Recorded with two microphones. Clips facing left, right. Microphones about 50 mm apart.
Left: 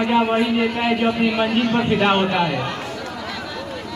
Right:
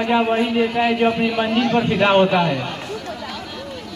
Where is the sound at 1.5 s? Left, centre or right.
Left.